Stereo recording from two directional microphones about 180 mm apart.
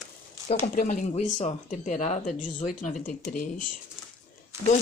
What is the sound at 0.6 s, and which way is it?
Speech, 50° left (ahead or behind).